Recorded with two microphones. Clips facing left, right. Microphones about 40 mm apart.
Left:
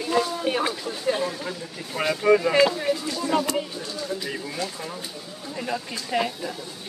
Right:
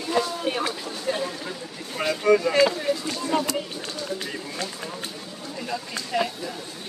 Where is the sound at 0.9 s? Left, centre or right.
Centre.